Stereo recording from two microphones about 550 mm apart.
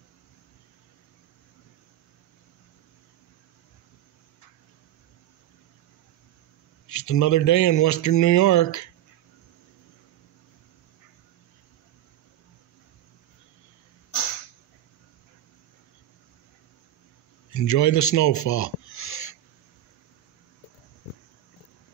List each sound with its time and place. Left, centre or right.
6.9 s speech: left
17.5 s a man's voice: left